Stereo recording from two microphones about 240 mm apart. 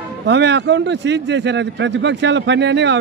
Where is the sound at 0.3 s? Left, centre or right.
Right.